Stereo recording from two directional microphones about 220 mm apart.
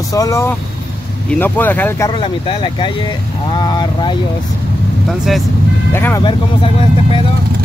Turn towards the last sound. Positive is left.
turn(degrees=25)  # may be behind; listen again after turning